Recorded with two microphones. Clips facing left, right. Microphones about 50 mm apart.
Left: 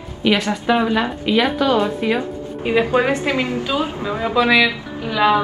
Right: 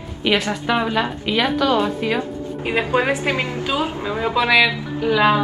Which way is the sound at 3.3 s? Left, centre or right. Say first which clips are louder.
Left 2 dB; right.